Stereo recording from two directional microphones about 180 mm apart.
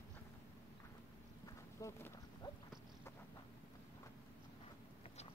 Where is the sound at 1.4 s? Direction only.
20° left (ahead or behind).